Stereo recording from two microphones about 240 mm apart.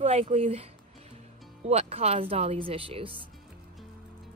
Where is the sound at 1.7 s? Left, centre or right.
Right.